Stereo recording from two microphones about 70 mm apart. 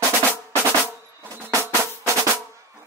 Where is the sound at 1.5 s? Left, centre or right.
Right.